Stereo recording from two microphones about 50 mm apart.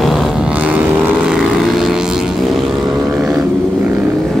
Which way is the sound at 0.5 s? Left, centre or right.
Right.